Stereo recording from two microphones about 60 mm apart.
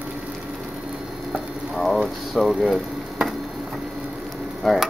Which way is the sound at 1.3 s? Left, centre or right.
Centre.